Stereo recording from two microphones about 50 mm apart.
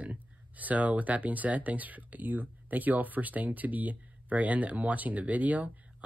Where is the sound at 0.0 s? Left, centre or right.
Right.